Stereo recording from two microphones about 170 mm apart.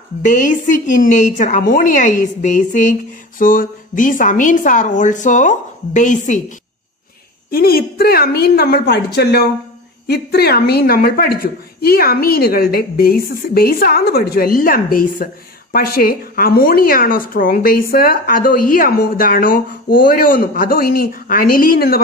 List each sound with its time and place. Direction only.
0.2 s a woman's voice: 50° left (ahead or behind)
7.5 s a woman's voice: 60° left (ahead or behind)